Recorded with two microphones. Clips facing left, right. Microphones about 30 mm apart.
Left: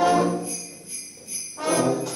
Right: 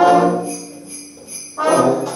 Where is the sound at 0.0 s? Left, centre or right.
Centre.